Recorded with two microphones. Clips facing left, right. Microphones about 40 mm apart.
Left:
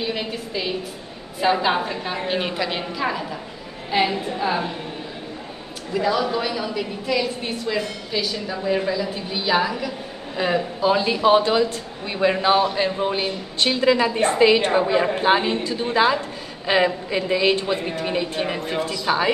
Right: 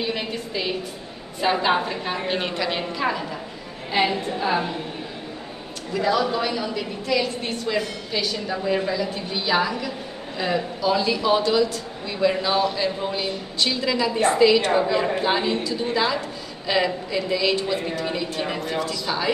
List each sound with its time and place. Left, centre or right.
0.0 s a sound: centre
1.4 s a woman's voice: centre
5.9 s a woman's voice: centre
10.3 s speech: left